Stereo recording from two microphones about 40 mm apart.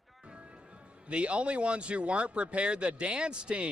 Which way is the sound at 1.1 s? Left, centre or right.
Right.